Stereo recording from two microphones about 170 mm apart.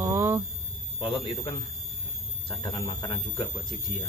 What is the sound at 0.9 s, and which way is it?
Speech, 30° left (ahead or behind).